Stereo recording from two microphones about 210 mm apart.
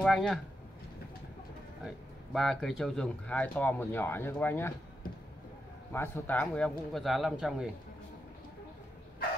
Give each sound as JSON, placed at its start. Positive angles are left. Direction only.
{"t": 0.0, "sound": "speech", "side_deg": 0}
{"t": 1.9, "sound": "speech", "side_deg": 0}
{"t": 5.9, "sound": "speech", "side_deg": 10}